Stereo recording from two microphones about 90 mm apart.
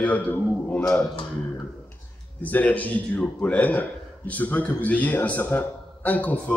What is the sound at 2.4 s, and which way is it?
A man's voice, 15° left (ahead or behind).